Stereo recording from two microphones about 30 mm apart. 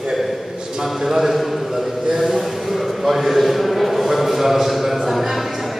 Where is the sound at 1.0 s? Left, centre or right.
Centre.